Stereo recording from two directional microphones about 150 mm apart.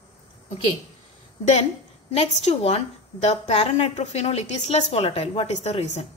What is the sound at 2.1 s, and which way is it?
A woman's voice, 40° left (ahead or behind).